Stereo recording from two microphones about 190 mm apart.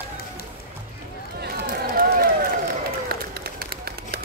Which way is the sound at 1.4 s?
55° right (ahead or behind).